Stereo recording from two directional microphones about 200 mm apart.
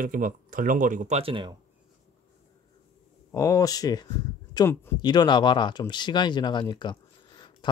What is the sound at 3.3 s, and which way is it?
Speech, 15° left (ahead or behind).